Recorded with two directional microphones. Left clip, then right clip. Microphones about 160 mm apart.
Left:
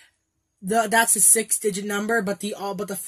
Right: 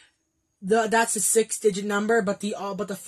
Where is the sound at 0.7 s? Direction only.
45° left (ahead or behind).